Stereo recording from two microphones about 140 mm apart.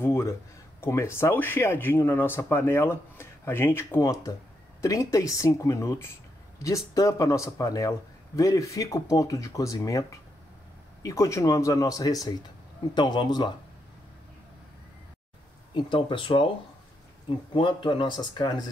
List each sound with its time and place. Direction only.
0.0 s speech: 20° left (ahead or behind)
15.7 s speech: 35° left (ahead or behind)
17.6 s speech: 35° left (ahead or behind)